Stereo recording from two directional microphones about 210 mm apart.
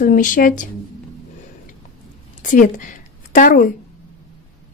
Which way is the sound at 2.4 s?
40° left (ahead or behind).